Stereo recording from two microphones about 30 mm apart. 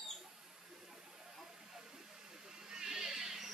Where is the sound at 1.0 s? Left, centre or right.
Centre.